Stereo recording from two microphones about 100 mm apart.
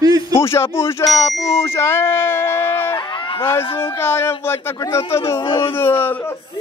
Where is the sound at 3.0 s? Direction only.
50° left (ahead or behind).